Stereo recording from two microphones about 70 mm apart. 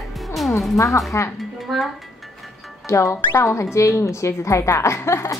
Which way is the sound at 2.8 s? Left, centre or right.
Left.